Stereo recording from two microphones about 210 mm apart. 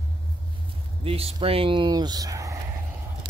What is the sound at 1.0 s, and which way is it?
Speech, 25° right (ahead or behind).